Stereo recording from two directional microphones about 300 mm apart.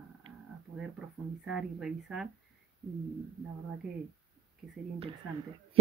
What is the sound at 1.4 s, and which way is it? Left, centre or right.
Speech, centre.